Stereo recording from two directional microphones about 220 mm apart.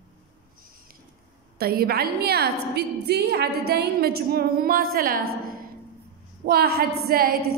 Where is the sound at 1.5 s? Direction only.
45° right (ahead or behind).